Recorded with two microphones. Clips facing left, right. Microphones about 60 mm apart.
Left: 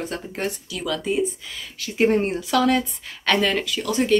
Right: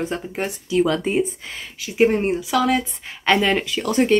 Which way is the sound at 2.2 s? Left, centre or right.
Centre.